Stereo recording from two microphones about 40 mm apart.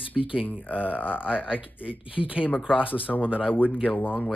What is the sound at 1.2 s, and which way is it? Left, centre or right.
A man's voice, right.